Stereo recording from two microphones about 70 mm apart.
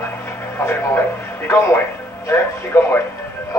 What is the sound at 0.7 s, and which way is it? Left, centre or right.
Speech, left.